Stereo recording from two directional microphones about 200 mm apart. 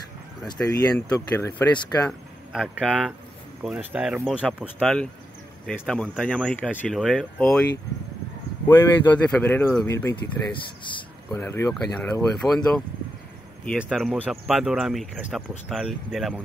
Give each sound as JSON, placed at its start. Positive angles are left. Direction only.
{"t": 0.5, "sound": "speech", "side_deg": 15}
{"t": 8.6, "sound": "speech", "side_deg": 10}
{"t": 10.5, "sound": "speech", "side_deg": 25}
{"t": 11.3, "sound": "speech", "side_deg": 10}